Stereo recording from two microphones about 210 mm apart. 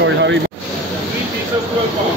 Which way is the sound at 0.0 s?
60° right (ahead or behind).